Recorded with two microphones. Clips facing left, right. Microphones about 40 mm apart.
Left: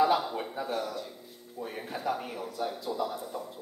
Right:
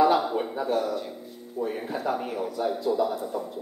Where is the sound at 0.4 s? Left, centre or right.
Centre.